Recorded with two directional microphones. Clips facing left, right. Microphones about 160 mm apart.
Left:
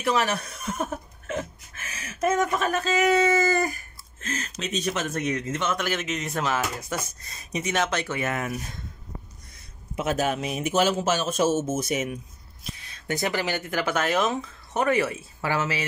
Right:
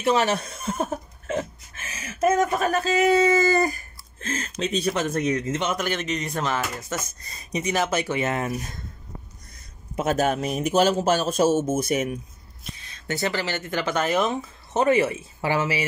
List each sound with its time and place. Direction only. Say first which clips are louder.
0.0 s speech: right 3 dB; 25° right (ahead or behind)
5.8 s speech: right 2 dB; 5° left (ahead or behind)
8.2 s speech: right 3 dB; 30° right (ahead or behind)
9.9 s a man's voice: right 3 dB; 45° right (ahead or behind)
12.9 s speech: even; 15° left (ahead or behind)
14.7 s speech: right 4 dB; 20° right (ahead or behind)